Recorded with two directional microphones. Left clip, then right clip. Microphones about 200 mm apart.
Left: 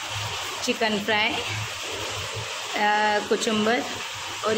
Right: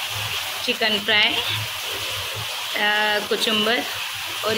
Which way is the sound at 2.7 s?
5° left (ahead or behind).